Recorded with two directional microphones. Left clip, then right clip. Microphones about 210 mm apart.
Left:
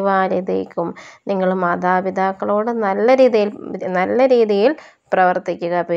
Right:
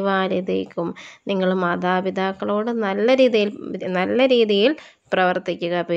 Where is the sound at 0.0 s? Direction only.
35° right (ahead or behind).